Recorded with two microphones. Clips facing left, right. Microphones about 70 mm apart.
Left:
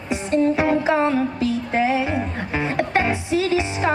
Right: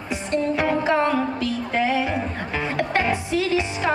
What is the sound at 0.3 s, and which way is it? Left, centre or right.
Music, centre.